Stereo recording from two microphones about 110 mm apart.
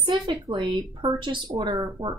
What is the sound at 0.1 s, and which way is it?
Speech, 40° right (ahead or behind).